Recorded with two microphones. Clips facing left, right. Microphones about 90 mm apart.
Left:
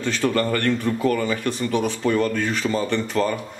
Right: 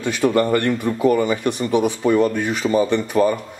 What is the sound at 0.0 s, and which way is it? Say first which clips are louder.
Speech: right 4 dB; 15° right (ahead or behind).